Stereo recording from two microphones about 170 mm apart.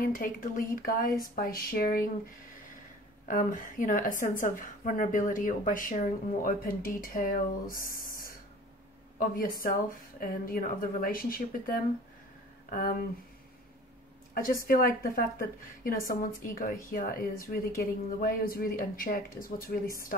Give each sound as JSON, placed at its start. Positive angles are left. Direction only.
{"t": 0.0, "sound": "speech", "side_deg": 55}
{"t": 3.3, "sound": "a woman's voice", "side_deg": 50}
{"t": 7.7, "sound": "a sound", "side_deg": 55}
{"t": 9.2, "sound": "speech", "side_deg": 55}
{"t": 14.3, "sound": "speech", "side_deg": 55}